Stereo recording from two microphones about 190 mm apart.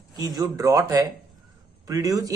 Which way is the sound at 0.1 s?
20° right (ahead or behind).